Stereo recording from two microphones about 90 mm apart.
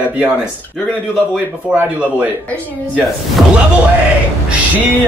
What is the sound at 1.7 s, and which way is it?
Speech, 15° right (ahead or behind).